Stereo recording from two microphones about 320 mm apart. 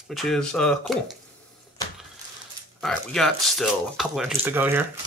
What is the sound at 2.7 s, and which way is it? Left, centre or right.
Speech, centre.